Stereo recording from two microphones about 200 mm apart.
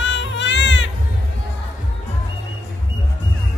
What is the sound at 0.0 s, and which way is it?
Baby cry, 65° left (ahead or behind).